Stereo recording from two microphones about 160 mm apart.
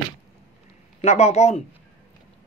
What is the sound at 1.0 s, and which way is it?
Speech, 45° left (ahead or behind).